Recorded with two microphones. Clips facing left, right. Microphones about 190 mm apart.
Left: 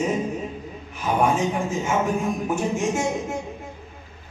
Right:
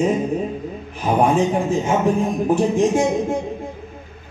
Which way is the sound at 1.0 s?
35° right (ahead or behind).